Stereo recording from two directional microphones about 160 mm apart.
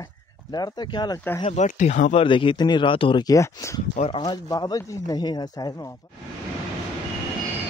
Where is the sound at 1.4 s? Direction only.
45° left (ahead or behind).